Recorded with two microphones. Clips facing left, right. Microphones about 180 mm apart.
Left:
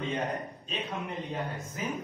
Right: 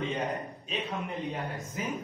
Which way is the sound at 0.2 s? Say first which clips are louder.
Even; centre (ahead or behind).